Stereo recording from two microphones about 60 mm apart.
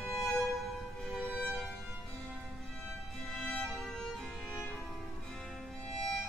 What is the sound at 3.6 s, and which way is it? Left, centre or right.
Music, centre.